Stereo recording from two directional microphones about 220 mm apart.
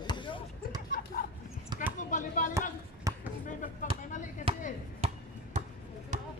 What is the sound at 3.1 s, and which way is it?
Basketball bounce, 15° right (ahead or behind).